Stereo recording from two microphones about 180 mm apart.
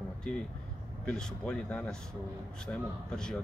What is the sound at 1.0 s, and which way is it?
Speech, 5° left (ahead or behind).